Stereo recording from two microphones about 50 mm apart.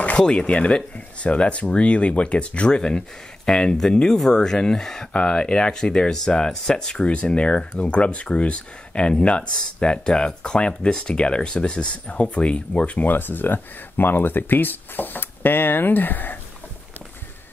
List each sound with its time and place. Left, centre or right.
0.2 s speech: centre; by 16.3 s left